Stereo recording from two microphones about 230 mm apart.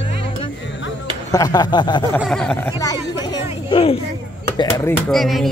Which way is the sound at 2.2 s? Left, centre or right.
Centre.